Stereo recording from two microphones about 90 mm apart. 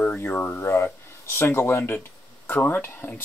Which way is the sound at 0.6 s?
35° left (ahead or behind).